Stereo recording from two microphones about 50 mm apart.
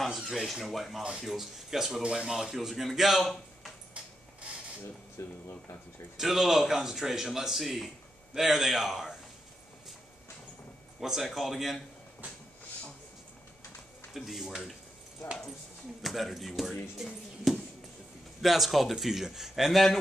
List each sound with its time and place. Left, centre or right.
0.2 s a man's voice: centre
0.7 s a man's voice: centre
2.0 s a man's voice: centre
2.5 s a man's voice: centre
5.2 s speech: left
6.1 s a man's voice: centre
11.0 s a man's voice: centre
14.1 s a man's voice: centre
16.0 s a man's voice: centre
17.5 s a sound: centre
18.4 s a man's voice: centre